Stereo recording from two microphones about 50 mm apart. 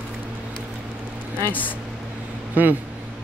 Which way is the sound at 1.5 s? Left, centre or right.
Left.